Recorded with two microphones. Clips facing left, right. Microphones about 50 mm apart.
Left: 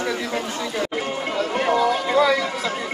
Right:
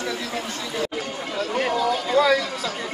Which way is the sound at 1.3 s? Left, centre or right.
Centre.